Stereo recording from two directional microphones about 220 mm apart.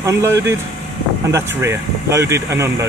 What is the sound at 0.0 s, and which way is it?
Speech, 10° right (ahead or behind).